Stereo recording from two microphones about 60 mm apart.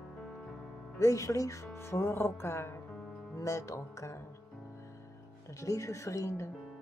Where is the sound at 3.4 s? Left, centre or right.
Left.